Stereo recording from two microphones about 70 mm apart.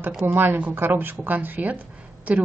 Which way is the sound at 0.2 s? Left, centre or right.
Right.